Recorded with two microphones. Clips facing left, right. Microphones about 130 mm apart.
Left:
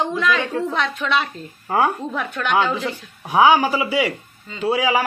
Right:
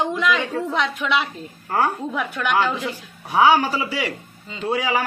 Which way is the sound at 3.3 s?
10° left (ahead or behind).